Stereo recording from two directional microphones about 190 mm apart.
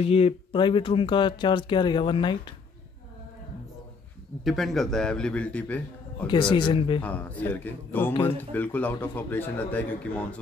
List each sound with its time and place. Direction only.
0.0 s speech: 30° left (ahead or behind)
4.5 s a man's voice: centre (ahead or behind)
6.2 s speech: 25° left (ahead or behind)
7.0 s speech: 10° left (ahead or behind)